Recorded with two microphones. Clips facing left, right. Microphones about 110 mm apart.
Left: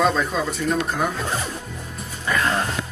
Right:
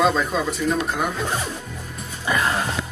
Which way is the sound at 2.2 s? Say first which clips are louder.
Even; 10° right (ahead or behind).